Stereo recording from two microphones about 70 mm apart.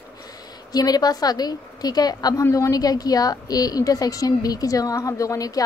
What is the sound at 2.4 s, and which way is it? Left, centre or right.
A woman's voice, left.